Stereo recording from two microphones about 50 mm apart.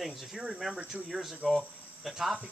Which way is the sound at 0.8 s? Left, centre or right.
Right.